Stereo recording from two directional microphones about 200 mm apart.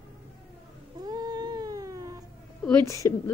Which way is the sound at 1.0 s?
20° right (ahead or behind).